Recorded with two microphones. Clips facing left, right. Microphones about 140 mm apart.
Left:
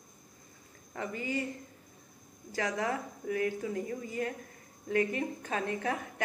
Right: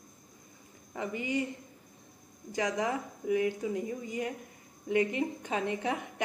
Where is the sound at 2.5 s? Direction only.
20° right (ahead or behind).